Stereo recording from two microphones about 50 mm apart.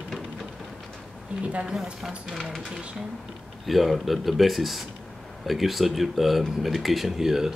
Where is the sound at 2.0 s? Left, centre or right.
Centre.